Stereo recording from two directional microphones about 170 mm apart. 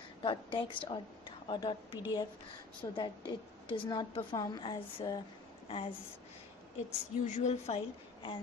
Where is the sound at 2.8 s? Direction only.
25° left (ahead or behind).